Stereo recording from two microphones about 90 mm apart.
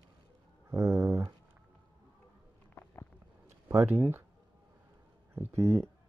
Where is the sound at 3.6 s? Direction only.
25° right (ahead or behind).